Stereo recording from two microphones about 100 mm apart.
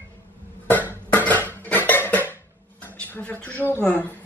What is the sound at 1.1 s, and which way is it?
Dishes, 15° left (ahead or behind).